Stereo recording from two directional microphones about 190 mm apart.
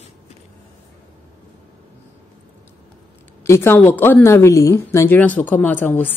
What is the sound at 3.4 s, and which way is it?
A woman's voice, 15° left (ahead or behind).